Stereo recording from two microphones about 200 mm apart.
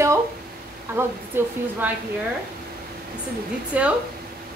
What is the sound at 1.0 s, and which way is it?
Speech, 10° right (ahead or behind).